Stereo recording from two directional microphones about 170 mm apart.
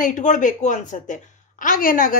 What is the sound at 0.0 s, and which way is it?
A woman's voice, 50° left (ahead or behind).